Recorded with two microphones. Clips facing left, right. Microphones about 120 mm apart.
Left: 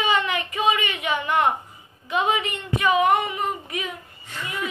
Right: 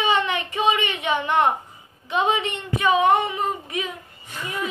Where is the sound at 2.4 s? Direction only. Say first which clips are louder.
Right 1 dB; 25° right (ahead or behind).